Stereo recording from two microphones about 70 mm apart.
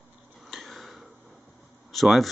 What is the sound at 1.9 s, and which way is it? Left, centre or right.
Speech, centre.